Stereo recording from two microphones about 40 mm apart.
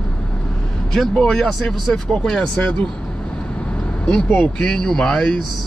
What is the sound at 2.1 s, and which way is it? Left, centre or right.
Speech, left.